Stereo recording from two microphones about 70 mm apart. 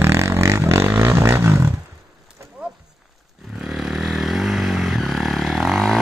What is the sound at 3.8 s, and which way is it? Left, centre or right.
Vehicle, centre.